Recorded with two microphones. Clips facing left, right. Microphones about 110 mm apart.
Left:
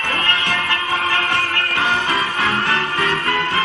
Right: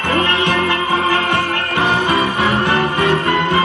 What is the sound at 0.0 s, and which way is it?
Music, 20° right (ahead or behind).